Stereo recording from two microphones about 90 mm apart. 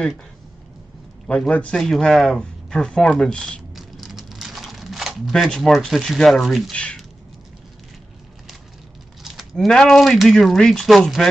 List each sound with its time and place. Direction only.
1.5 s speech: 15° left (ahead or behind)
3.7 s crumpling: centre (ahead or behind)
6.7 s speech: 10° left (ahead or behind)
9.2 s speech: 5° right (ahead or behind)